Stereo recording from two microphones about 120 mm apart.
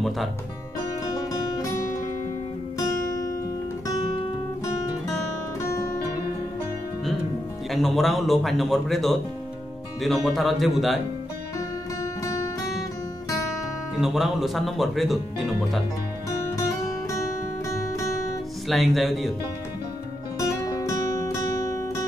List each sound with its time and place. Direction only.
3.1 s music: 25° left (ahead or behind)
5.7 s music: 20° left (ahead or behind)
7.7 s speech: centre (ahead or behind)
12.0 s music: 25° left (ahead or behind)
13.9 s speech: centre (ahead or behind)
17.6 s music: 25° left (ahead or behind)
18.7 s speech: centre (ahead or behind)
20.3 s music: 25° left (ahead or behind)